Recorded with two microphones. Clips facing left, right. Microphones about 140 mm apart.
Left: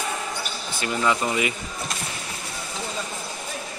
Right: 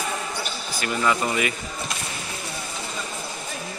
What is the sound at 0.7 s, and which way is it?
Speech, 20° left (ahead or behind).